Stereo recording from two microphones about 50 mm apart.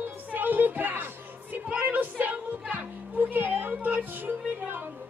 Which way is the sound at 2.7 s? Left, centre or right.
Right.